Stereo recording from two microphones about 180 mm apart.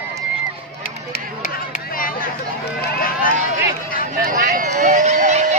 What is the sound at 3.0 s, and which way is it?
Run, 55° left (ahead or behind).